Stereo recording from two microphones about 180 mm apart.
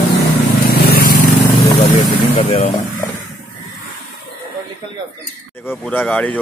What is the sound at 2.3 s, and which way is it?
Speech, 35° left (ahead or behind).